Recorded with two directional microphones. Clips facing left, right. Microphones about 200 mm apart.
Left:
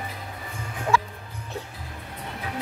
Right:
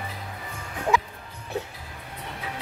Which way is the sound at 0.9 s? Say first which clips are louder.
Left 1 dB; 20° right (ahead or behind).